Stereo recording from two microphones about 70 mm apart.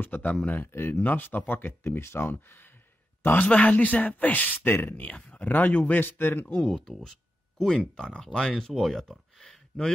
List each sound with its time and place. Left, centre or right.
0.0 s speech: left
3.2 s a sound: left
3.4 s speech: centre
6.6 s speech: centre